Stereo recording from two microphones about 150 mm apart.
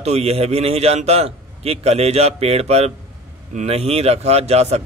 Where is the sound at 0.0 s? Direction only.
45° right (ahead or behind).